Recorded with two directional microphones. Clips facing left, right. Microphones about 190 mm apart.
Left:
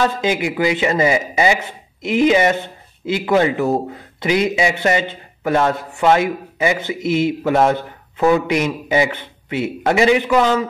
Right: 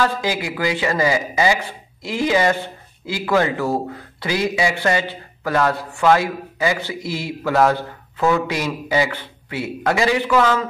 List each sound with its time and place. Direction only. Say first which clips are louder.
0.0 s speech: left 3 dB; 20° left (ahead or behind)